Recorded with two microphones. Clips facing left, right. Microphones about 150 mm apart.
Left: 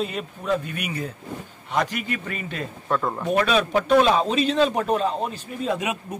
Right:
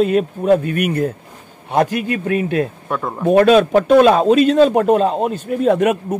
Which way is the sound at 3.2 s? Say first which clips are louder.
Right 13 dB; 50° right (ahead or behind).